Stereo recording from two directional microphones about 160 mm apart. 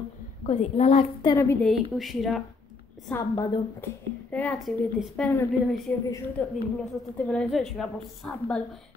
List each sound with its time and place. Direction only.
0.5 s a woman's voice: 40° left (ahead or behind)
1.2 s a woman's voice: 20° left (ahead or behind)
1.6 s a woman's voice: centre (ahead or behind)
3.1 s a woman's voice: 20° left (ahead or behind)
4.3 s a woman's voice: 10° left (ahead or behind)